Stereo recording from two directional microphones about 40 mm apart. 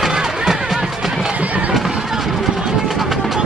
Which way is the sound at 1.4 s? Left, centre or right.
Right.